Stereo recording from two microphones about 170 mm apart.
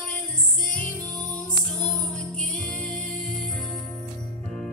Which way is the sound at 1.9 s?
5° left (ahead or behind).